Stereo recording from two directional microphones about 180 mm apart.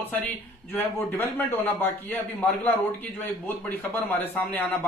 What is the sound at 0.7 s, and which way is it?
A man's voice, 10° left (ahead or behind).